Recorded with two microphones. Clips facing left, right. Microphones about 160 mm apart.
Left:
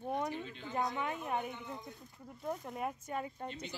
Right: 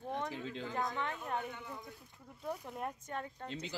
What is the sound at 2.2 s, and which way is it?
Speech, centre (ahead or behind).